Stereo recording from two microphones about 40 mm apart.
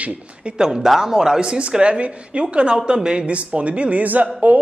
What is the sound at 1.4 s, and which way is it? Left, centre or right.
A man's voice, right.